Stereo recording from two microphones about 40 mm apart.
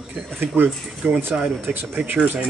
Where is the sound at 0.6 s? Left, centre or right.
Right.